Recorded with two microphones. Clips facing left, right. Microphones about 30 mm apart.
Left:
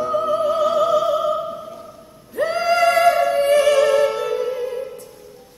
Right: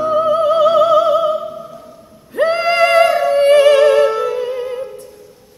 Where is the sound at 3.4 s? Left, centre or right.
Right.